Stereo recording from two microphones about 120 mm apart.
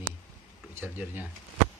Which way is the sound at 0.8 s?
15° right (ahead or behind).